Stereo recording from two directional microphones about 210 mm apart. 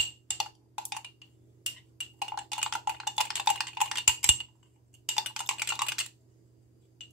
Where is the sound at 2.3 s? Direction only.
Centre (ahead or behind).